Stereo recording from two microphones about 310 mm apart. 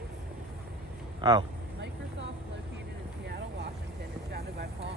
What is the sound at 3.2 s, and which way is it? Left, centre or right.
Vehicle, right.